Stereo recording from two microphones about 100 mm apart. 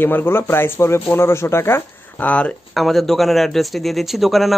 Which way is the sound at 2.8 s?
Centre (ahead or behind).